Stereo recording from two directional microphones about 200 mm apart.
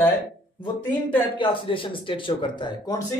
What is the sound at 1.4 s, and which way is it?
Speech, 25° left (ahead or behind).